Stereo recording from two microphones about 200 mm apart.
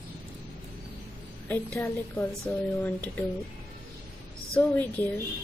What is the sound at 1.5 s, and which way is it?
A woman's voice, 10° left (ahead or behind).